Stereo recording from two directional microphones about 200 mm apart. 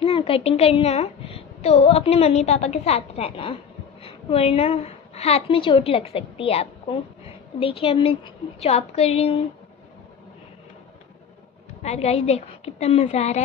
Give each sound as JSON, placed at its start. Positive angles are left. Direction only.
{"t": 0.0, "sound": "a child's voice", "side_deg": 30}
{"t": 11.8, "sound": "a child's voice", "side_deg": 30}